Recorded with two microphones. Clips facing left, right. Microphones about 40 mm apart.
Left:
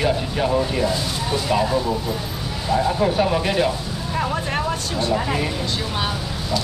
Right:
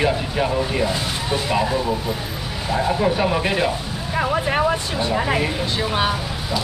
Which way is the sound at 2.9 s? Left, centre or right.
Centre.